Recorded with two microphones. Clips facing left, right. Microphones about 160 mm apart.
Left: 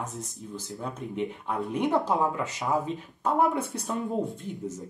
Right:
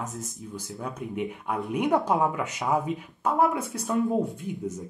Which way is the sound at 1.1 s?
10° right (ahead or behind).